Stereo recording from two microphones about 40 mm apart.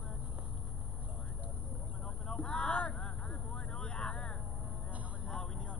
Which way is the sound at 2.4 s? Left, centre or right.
Centre.